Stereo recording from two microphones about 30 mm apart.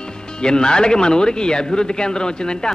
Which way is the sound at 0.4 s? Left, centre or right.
Left.